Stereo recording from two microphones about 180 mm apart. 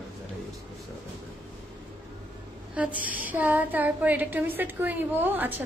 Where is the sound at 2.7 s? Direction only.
10° right (ahead or behind).